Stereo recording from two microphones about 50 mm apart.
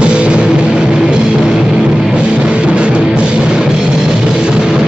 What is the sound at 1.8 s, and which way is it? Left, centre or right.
Music, centre.